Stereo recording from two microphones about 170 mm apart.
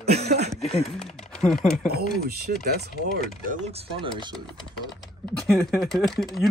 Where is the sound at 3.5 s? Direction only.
40° right (ahead or behind).